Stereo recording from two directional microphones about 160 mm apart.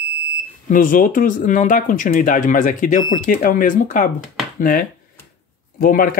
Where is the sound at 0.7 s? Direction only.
60° left (ahead or behind).